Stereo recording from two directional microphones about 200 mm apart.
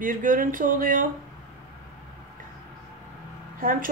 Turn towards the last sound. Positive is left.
turn(degrees=-45)  # may be behind; listen again after turning